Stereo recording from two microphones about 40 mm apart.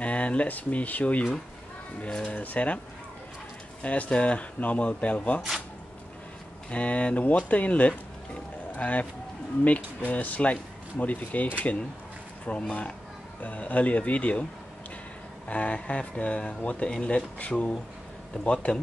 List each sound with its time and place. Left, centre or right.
0.0 s speech: left
3.8 s speech: left
6.7 s speech: left
15.4 s speech: left